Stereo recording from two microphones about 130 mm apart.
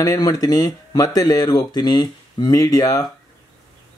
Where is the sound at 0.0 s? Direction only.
25° left (ahead or behind).